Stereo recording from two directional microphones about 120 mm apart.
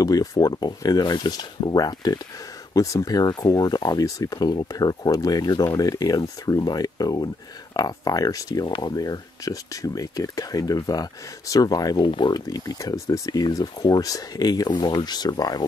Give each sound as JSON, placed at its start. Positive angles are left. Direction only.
{"t": 0.0, "sound": "speech", "side_deg": 30}